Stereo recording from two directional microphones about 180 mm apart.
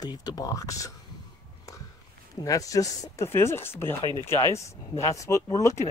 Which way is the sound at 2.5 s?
20° left (ahead or behind).